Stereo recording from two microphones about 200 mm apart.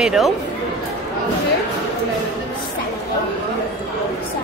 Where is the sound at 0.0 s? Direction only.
5° right (ahead or behind).